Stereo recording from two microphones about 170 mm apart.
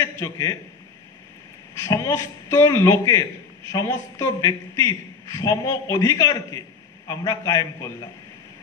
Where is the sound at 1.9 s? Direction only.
20° left (ahead or behind).